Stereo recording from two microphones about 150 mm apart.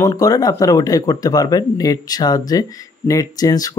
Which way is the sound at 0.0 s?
20° left (ahead or behind).